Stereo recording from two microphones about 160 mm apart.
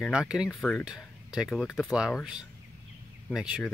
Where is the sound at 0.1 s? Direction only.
5° right (ahead or behind).